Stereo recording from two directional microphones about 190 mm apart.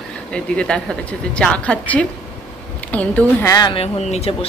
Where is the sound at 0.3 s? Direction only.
5° left (ahead or behind).